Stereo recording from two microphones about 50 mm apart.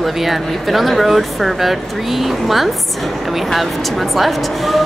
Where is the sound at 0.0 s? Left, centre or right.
Centre.